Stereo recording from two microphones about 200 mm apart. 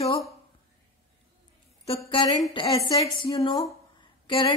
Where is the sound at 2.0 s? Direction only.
25° left (ahead or behind).